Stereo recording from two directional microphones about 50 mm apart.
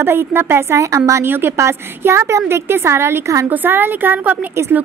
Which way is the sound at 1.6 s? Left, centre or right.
Right.